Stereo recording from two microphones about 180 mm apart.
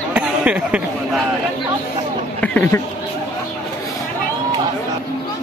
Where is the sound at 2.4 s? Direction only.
10° left (ahead or behind).